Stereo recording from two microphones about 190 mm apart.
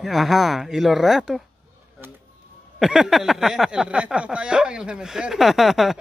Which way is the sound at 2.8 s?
Centre (ahead or behind).